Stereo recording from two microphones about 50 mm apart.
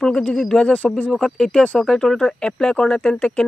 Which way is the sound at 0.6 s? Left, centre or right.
Left.